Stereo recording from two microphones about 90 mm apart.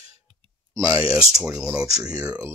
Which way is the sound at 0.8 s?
40° right (ahead or behind).